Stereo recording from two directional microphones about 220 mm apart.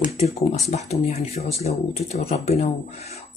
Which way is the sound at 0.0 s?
30° left (ahead or behind).